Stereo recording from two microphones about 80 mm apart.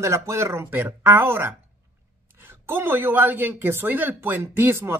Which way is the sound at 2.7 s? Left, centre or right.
Right.